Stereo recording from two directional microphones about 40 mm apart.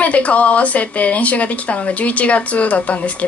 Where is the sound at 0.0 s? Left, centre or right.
Left.